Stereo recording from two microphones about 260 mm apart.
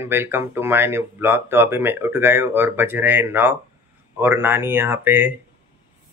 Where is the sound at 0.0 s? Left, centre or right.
Centre.